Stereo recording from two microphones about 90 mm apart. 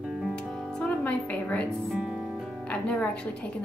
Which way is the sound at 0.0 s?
5° right (ahead or behind).